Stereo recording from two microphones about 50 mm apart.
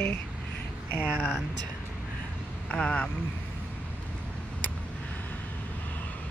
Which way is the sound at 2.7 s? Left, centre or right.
Left.